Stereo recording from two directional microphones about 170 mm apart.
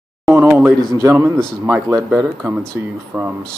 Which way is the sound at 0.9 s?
15° right (ahead or behind).